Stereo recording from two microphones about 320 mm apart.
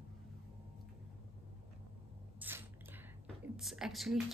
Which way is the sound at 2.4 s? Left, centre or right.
Centre.